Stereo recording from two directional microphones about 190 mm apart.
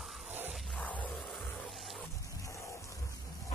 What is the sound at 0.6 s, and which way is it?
Music, 5° left (ahead or behind).